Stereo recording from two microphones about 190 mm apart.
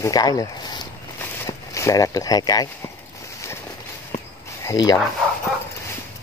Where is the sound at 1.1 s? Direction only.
15° left (ahead or behind).